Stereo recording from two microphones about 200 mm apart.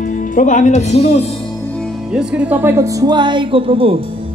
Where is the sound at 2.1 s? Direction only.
5° right (ahead or behind).